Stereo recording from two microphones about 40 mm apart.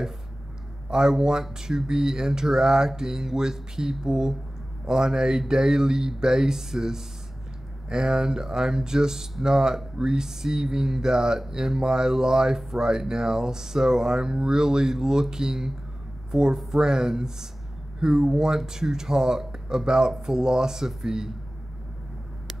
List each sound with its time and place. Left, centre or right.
0.8 s speech: centre